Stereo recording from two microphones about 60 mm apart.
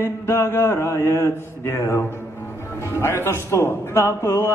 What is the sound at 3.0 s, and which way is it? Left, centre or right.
Music, left.